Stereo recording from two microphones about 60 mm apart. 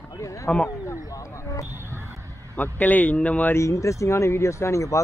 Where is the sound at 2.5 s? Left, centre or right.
Left.